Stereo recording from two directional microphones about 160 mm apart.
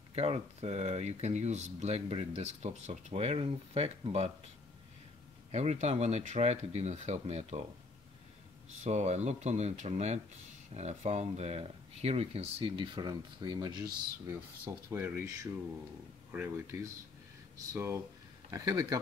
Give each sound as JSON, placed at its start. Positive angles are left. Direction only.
{"t": 0.1, "sound": "speech", "side_deg": -40}
{"t": 5.5, "sound": "speech", "side_deg": -45}
{"t": 8.8, "sound": "speech", "side_deg": -45}
{"t": 14.2, "sound": "speech", "side_deg": -15}
{"t": 16.3, "sound": "speech", "side_deg": -20}